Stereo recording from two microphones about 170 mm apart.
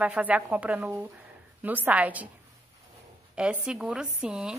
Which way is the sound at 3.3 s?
5° right (ahead or behind).